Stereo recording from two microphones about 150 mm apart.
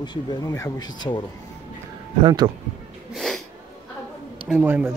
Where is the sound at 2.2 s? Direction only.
30° right (ahead or behind).